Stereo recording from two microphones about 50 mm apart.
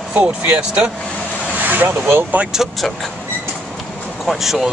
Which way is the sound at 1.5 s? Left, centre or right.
Right.